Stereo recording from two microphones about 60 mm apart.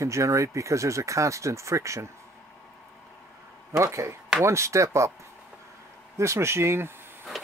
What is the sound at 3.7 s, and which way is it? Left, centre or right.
Speech, right.